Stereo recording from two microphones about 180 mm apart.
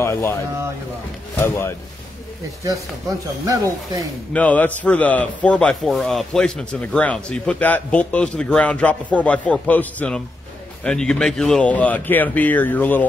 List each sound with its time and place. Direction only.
0.0 s speech: 15° left (ahead or behind)
3.4 s speech: 20° right (ahead or behind)
4.3 s speech: 10° left (ahead or behind)